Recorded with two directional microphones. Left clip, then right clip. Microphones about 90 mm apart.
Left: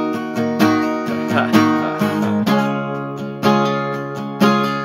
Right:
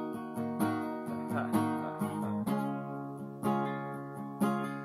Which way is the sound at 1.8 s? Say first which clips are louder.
Left 17 dB; centre (ahead or behind).